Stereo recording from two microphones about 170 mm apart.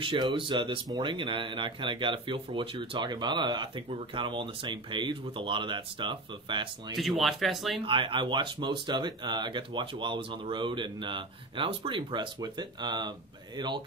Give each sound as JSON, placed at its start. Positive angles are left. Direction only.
{"t": 0.0, "sound": "speech", "side_deg": -30}
{"t": 7.0, "sound": "speech", "side_deg": 0}
{"t": 7.8, "sound": "speech", "side_deg": -30}